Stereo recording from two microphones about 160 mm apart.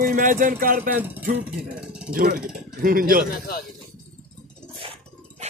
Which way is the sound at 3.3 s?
65° left (ahead or behind).